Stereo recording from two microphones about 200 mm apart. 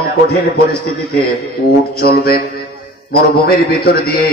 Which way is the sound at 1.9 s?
50° left (ahead or behind).